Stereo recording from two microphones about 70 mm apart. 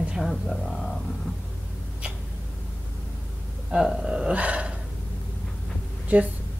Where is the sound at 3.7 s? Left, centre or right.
Centre.